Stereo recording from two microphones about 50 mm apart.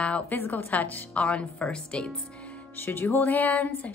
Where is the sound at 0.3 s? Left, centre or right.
Left.